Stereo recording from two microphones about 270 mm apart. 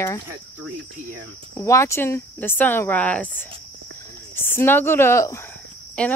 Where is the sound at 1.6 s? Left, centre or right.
Centre.